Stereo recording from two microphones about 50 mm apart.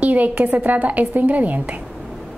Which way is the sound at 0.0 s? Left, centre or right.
Right.